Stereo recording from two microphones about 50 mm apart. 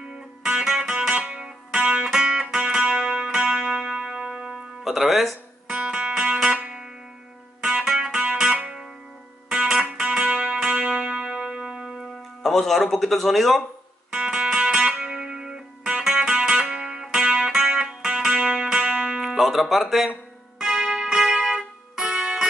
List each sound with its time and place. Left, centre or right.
0.4 s music: centre
5.7 s music: right
7.6 s music: centre
12.4 s speech: centre
14.1 s music: centre
19.2 s speech: centre
20.5 s music: centre